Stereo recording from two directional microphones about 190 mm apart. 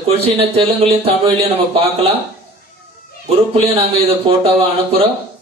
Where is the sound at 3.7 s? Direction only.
30° right (ahead or behind).